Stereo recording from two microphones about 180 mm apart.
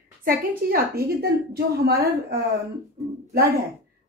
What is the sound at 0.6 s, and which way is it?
A woman's voice, 50° right (ahead or behind).